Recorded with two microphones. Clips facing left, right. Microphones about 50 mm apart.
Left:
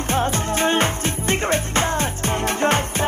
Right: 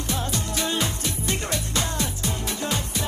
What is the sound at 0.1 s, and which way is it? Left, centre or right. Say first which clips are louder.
Music: left 8 dB; left.